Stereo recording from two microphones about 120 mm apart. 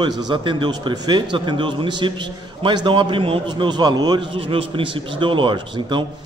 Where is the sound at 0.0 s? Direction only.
40° right (ahead or behind).